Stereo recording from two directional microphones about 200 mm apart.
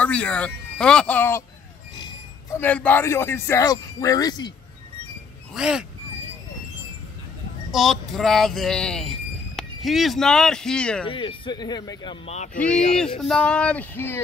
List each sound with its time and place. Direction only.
0.0 s speech: 5° left (ahead or behind)
2.5 s speech: 10° left (ahead or behind)
5.5 s speech: 5° right (ahead or behind)
7.7 s speech: centre (ahead or behind)
11.1 s speech: 25° left (ahead or behind)
12.7 s speech: 5° left (ahead or behind)